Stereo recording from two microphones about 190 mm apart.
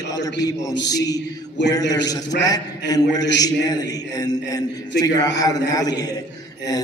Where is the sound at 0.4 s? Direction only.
20° left (ahead or behind).